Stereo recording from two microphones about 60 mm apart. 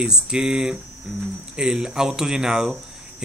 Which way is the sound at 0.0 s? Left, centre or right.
Centre.